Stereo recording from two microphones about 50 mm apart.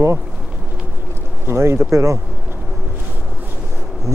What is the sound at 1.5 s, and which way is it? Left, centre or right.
Speech, right.